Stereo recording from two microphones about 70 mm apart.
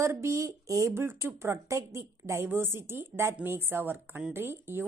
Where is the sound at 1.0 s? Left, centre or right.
Right.